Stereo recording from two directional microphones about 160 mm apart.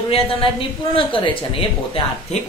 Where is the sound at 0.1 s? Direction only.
35° left (ahead or behind).